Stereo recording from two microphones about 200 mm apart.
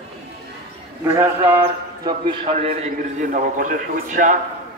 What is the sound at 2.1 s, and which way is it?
A man's voice, 25° right (ahead or behind).